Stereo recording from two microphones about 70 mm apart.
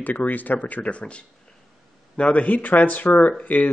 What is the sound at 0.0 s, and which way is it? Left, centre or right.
Speech, left.